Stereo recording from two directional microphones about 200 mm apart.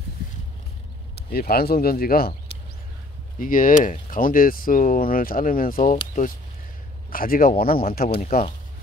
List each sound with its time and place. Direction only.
1.3 s speech: 50° left (ahead or behind)
3.3 s speech: 45° left (ahead or behind)